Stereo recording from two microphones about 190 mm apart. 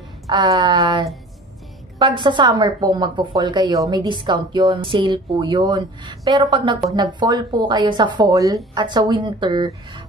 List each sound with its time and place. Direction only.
0.3 s speech: 20° right (ahead or behind)